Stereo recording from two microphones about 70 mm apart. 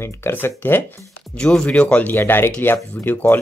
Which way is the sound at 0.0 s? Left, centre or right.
Left.